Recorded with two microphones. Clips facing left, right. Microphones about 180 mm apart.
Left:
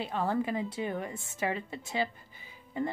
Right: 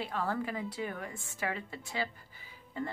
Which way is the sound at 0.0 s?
20° left (ahead or behind).